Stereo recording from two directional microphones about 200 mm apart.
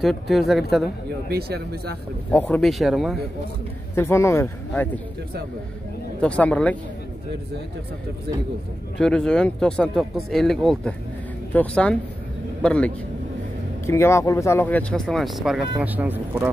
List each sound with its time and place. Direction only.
0.0 s speech: centre (ahead or behind)
1.3 s speech: 50° right (ahead or behind)
2.3 s speech: 10° left (ahead or behind)
3.9 s speech: 10° left (ahead or behind)
6.2 s speech: 5° left (ahead or behind)
8.9 s speech: 5° left (ahead or behind)